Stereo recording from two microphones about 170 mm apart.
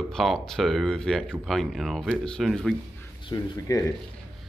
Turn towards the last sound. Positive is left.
turn(degrees=20)  # may be behind; listen again after turning